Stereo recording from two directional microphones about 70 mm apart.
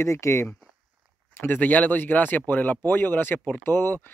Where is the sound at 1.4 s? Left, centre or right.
Left.